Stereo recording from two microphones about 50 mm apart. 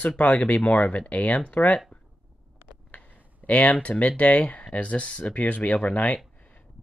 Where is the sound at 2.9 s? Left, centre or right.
Left.